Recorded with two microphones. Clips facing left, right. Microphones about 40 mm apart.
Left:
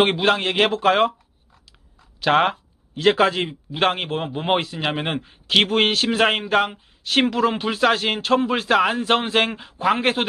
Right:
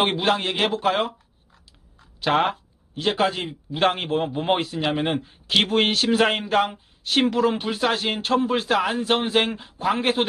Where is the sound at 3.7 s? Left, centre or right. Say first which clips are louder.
Even; left.